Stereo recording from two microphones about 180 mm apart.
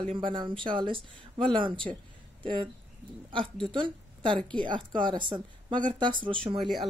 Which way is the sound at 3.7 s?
25° right (ahead or behind).